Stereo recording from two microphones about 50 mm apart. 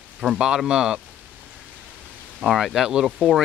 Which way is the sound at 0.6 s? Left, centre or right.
Centre.